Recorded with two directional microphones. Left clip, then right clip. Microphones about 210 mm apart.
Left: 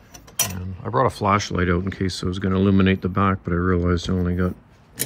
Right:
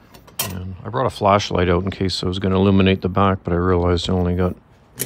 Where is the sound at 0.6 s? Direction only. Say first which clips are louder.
Left 1 dB; 10° right (ahead or behind).